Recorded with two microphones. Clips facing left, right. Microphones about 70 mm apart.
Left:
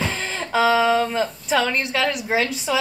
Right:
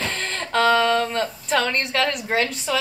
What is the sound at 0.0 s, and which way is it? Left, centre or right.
Speech, centre.